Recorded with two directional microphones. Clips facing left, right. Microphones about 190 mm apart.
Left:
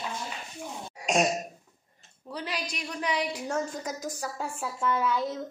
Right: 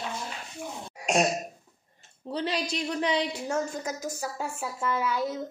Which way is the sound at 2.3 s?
25° right (ahead or behind).